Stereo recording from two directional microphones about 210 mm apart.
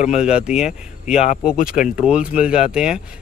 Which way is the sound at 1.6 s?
40° left (ahead or behind).